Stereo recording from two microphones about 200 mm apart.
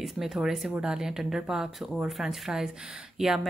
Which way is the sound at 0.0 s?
Centre (ahead or behind).